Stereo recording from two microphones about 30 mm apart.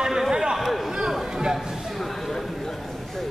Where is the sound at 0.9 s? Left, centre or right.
Centre.